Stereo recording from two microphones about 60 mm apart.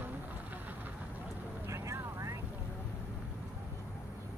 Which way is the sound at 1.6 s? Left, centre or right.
Right.